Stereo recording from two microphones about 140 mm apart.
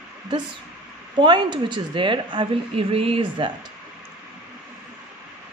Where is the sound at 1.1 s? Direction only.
35° right (ahead or behind).